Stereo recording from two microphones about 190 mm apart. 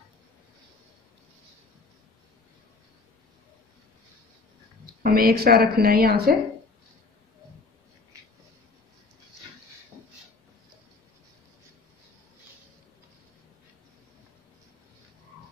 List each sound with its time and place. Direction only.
5.0 s a woman's voice: 50° right (ahead or behind)